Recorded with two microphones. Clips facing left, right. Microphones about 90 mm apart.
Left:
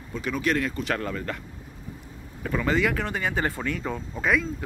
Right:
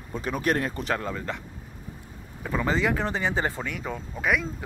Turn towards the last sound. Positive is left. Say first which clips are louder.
# left 1 dB
turn(degrees=-15)  # may be behind; listen again after turning